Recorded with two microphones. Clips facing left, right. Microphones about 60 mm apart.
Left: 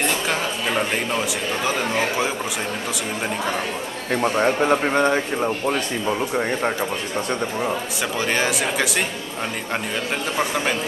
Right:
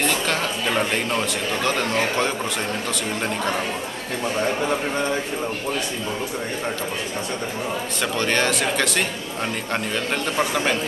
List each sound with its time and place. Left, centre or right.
0.0 s speech: centre
4.1 s speech: left
8.2 s speech: centre
10.3 s speech: centre